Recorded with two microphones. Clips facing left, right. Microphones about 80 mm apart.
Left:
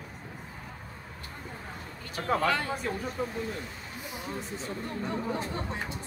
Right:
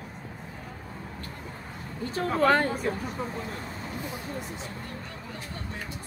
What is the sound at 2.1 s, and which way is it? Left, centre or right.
Speech, right.